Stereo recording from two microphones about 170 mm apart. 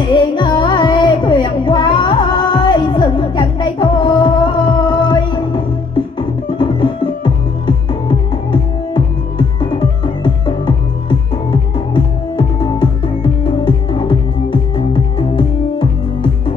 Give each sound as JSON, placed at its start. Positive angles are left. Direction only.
{"t": 0.1, "sound": "music", "side_deg": 25}